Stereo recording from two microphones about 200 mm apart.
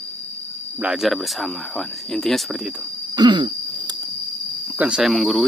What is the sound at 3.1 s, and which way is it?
Throat clearing, 20° right (ahead or behind).